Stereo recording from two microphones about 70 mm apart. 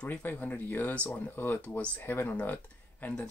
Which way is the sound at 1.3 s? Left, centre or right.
Left.